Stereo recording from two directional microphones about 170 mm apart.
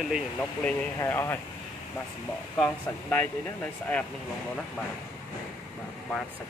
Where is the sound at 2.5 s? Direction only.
10° left (ahead or behind).